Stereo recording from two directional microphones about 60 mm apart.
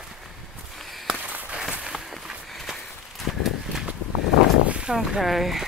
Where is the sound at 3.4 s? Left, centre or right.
Centre.